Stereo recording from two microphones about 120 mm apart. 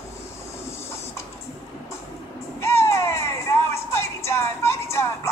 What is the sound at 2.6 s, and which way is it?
Music, 20° left (ahead or behind).